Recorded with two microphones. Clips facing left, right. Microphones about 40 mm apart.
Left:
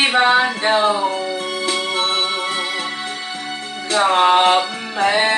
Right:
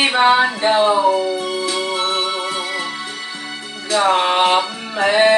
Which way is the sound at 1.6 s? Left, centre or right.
Left.